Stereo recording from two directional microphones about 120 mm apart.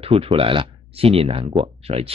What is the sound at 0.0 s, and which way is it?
Speech, 50° right (ahead or behind).